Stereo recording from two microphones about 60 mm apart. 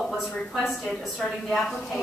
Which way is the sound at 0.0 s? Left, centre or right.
Centre.